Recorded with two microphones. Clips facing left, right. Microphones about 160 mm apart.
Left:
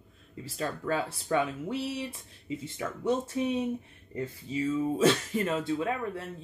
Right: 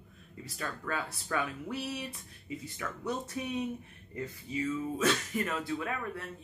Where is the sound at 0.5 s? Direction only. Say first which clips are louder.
Left 6 dB; 30° left (ahead or behind).